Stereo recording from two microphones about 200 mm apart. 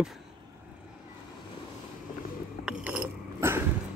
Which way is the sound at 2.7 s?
5° right (ahead or behind).